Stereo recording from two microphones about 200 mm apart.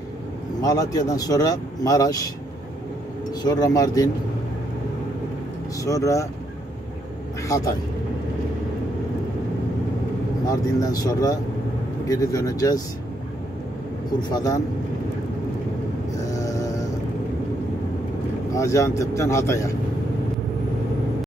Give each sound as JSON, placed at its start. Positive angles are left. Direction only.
{"t": 0.6, "sound": "speech", "side_deg": 20}
{"t": 3.4, "sound": "speech", "side_deg": 20}
{"t": 5.9, "sound": "speech", "side_deg": 15}
{"t": 10.4, "sound": "speech", "side_deg": 15}
{"t": 14.3, "sound": "speech", "side_deg": 20}
{"t": 16.3, "sound": "music", "side_deg": 15}
{"t": 18.5, "sound": "speech", "side_deg": 15}